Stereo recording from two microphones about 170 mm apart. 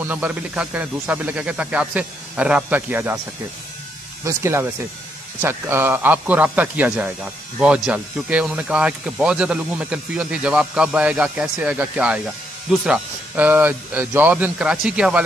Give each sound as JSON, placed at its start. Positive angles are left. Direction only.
{"t": 0.0, "sound": "speech", "side_deg": -10}
{"t": 4.2, "sound": "speech", "side_deg": -15}